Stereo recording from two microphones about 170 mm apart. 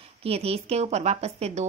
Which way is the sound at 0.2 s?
35° right (ahead or behind).